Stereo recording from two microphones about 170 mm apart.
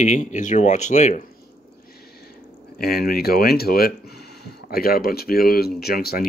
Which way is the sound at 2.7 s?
60° left (ahead or behind).